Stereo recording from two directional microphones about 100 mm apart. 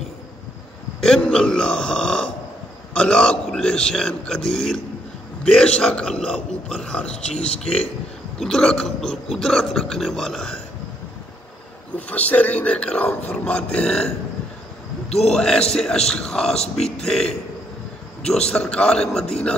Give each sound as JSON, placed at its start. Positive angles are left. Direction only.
{"t": 1.0, "sound": "a man's voice", "side_deg": 10}
{"t": 12.1, "sound": "a man's voice", "side_deg": 15}
{"t": 15.0, "sound": "a man's voice", "side_deg": 90}
{"t": 15.3, "sound": "a man's voice", "side_deg": 5}